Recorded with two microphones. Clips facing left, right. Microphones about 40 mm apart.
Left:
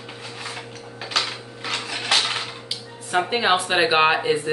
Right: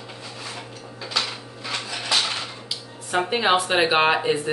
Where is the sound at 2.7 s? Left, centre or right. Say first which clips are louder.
Even; centre.